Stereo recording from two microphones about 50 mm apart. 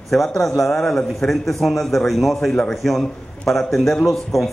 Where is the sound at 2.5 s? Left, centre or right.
Centre.